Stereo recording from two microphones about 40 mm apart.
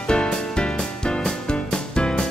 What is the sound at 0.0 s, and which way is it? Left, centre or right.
Music, left.